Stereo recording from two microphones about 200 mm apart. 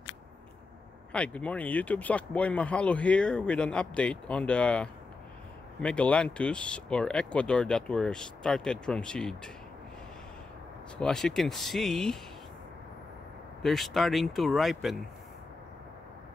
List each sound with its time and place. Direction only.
1.1 s speech: 5° left (ahead or behind)
11.0 s speech: 5° left (ahead or behind)
13.6 s speech: centre (ahead or behind)